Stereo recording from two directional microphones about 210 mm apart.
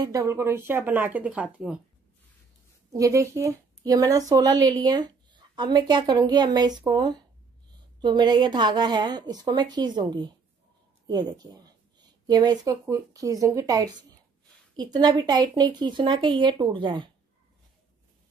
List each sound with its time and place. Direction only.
0.0 s speech: 15° right (ahead or behind)
2.9 s speech: 15° right (ahead or behind)